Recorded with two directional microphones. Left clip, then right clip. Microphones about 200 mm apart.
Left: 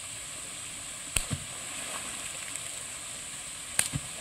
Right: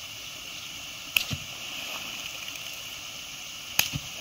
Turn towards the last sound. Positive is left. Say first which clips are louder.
# right 5 dB
turn(degrees=10)  # may be behind; listen again after turning